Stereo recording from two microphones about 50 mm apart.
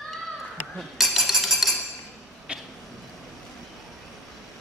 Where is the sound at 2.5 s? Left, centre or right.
Right.